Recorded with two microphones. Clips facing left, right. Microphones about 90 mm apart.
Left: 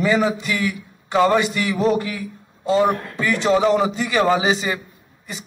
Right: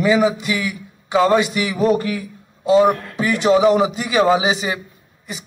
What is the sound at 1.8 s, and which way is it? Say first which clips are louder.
Speech: right 3 dB; 5° right (ahead or behind).